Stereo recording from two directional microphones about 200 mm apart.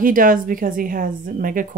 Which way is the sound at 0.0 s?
45° right (ahead or behind).